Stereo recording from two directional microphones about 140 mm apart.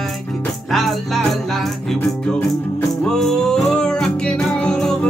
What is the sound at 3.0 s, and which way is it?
Music, 5° left (ahead or behind).